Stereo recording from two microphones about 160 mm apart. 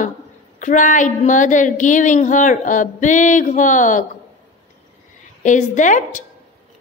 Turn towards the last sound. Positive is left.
turn(degrees=50)  # may be behind; listen again after turning